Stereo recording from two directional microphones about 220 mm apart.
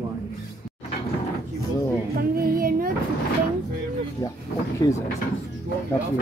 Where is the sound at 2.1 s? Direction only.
40° right (ahead or behind).